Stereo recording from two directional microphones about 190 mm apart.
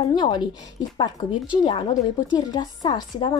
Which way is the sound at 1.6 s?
25° left (ahead or behind).